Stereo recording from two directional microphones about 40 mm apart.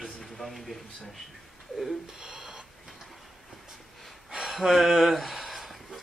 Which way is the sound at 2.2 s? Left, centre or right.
Centre.